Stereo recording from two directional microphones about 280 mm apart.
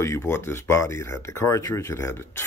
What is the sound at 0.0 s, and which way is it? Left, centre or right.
Speech, centre.